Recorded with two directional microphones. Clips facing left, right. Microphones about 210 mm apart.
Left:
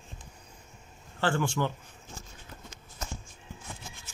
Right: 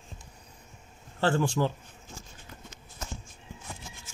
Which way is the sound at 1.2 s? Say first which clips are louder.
Right 3 dB; 25° right (ahead or behind).